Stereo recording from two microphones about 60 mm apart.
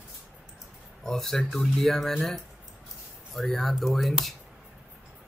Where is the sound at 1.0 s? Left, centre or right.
Centre.